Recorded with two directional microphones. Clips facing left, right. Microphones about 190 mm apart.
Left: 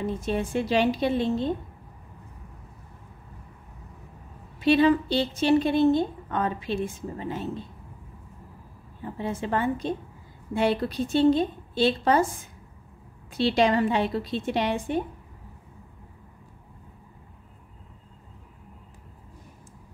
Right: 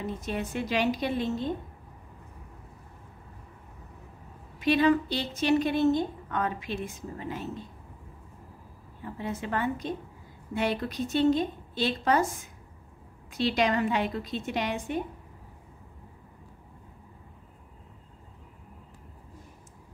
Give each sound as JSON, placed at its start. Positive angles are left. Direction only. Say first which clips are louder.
{"t": 0.2, "sound": "a woman's voice", "louder": "left 5 dB", "side_deg": 30}
{"t": 4.6, "sound": "a woman's voice", "louder": "left 3 dB", "side_deg": 30}
{"t": 9.2, "sound": "a woman's voice", "louder": "left 4 dB", "side_deg": 30}
{"t": 13.3, "sound": "a woman's voice", "louder": "left 4 dB", "side_deg": 30}